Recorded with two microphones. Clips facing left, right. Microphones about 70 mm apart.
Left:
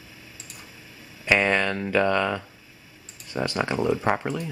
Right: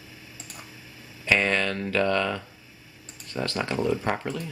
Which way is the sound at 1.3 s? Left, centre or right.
Centre.